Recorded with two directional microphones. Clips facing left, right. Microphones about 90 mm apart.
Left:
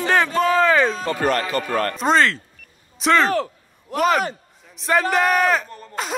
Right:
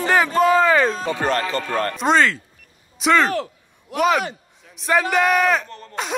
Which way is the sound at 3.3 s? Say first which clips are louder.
Left 3 dB; 40° left (ahead or behind).